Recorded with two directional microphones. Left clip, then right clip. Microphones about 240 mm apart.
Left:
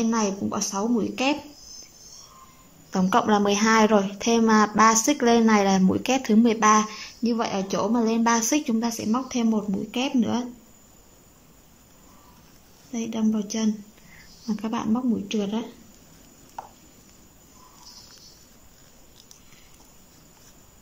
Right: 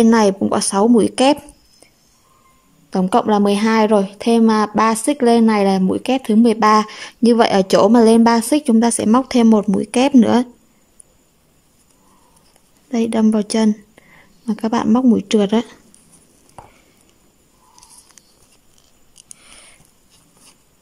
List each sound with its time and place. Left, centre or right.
0.0 s a woman's voice: right
2.9 s a woman's voice: centre; by 10.4 s right
12.9 s a woman's voice: right
14.4 s a woman's voice: right